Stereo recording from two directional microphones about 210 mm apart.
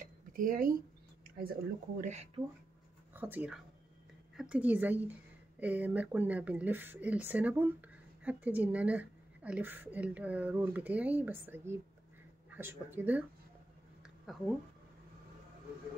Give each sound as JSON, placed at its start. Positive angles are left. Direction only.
{"t": 0.0, "sound": "a sound", "side_deg": -40}
{"t": 1.2, "sound": "speech", "side_deg": -45}
{"t": 3.1, "sound": "a woman's voice", "side_deg": -10}
{"t": 14.3, "sound": "speech", "side_deg": 0}